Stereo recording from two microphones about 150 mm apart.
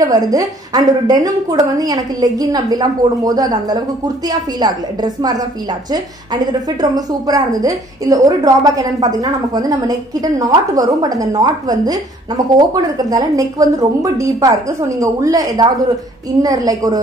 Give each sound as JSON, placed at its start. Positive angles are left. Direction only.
{"t": 0.0, "sound": "a woman's voice", "side_deg": -25}